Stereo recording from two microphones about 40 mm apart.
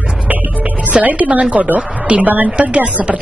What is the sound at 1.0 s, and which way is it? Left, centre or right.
A woman's voice, right.